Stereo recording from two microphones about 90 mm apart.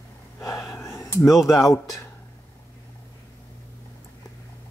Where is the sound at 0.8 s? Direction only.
30° left (ahead or behind).